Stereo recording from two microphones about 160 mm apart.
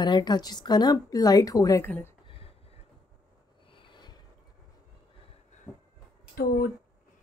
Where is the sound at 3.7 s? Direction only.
30° left (ahead or behind).